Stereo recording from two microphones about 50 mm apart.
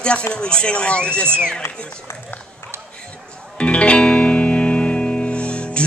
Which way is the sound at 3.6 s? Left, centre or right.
Left.